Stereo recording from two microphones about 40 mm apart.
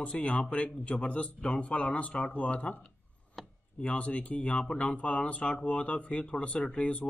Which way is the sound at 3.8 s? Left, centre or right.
Left.